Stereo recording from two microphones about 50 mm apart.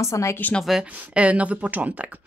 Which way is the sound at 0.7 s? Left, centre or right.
Centre.